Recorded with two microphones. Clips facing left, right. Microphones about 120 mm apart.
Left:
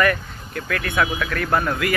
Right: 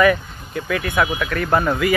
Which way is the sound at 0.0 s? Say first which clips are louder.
Right 4 dB; 5° right (ahead or behind).